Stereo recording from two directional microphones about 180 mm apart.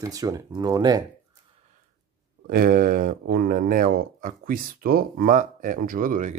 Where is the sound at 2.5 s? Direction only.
55° right (ahead or behind).